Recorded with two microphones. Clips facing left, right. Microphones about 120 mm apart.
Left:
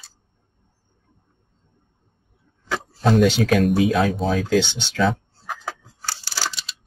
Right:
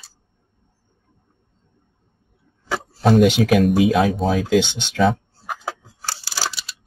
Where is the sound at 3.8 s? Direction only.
15° right (ahead or behind).